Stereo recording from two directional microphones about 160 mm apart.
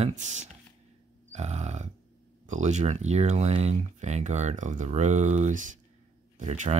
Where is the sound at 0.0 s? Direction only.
50° right (ahead or behind).